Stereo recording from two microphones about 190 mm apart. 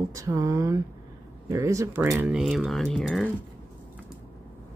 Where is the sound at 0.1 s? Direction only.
15° right (ahead or behind); by 3.3 s centre (ahead or behind).